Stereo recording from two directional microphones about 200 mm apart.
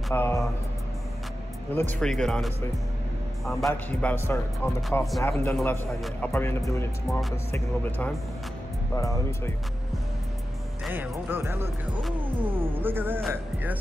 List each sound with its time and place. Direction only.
0.1 s a man's voice: 10° left (ahead or behind)
1.7 s a man's voice: 10° left (ahead or behind)
5.6 s a man's voice: centre (ahead or behind)
7.1 s a man's voice: centre (ahead or behind); by 9.2 s 15° left (ahead or behind)
10.9 s speech: 10° right (ahead or behind)
12.4 s speech: 25° right (ahead or behind)
12.6 s speech: 10° right (ahead or behind)